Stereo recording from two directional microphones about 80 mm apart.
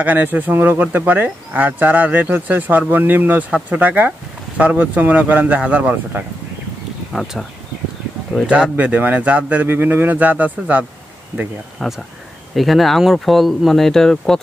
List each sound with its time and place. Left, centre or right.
0.0 s speech: right
7.1 s speech: centre
8.7 s speech: centre
11.8 s speech: centre